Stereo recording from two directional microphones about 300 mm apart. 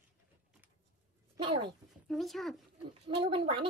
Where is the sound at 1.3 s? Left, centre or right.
Centre.